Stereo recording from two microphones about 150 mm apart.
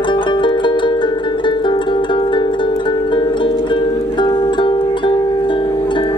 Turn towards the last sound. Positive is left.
turn(degrees=30)  # may be behind; listen again after turning